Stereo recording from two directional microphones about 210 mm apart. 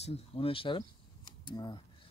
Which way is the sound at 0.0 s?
25° left (ahead or behind).